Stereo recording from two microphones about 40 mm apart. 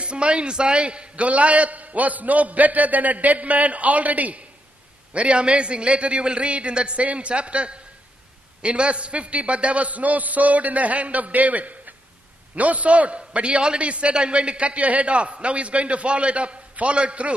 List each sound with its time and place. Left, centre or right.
0.0 s a man's voice: right